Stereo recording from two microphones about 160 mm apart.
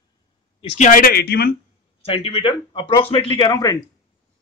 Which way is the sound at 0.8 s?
60° left (ahead or behind).